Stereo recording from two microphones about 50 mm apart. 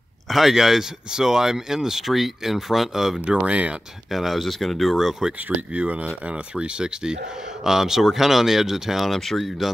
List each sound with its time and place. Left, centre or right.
0.3 s speech: centre
3.3 s speech: right
4.1 s speech: centre
5.7 s speech: right; by 9.7 s centre